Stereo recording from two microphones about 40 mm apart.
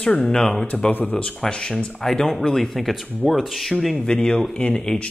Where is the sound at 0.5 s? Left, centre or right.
Left.